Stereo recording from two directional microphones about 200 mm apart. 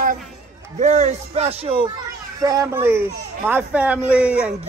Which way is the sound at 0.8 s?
35° right (ahead or behind).